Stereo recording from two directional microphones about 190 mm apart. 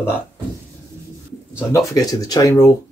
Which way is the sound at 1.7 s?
15° left (ahead or behind).